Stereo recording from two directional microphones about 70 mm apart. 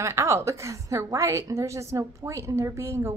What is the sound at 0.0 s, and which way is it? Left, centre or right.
A woman's voice, right.